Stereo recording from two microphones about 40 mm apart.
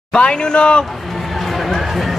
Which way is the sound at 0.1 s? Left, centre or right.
Left.